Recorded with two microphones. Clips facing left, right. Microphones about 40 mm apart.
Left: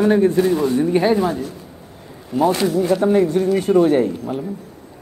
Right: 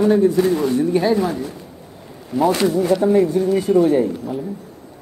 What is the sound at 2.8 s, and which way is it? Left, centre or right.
Speech, left.